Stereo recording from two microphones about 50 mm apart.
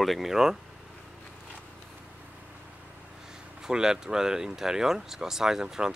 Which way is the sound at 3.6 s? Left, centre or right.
Centre.